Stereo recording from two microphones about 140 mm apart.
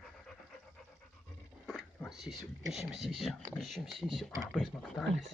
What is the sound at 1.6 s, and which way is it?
Speech, centre (ahead or behind).